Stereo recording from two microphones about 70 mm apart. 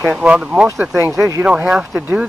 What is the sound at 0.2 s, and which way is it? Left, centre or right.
Speech, centre.